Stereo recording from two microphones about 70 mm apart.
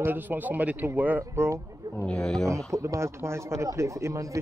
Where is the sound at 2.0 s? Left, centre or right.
Centre.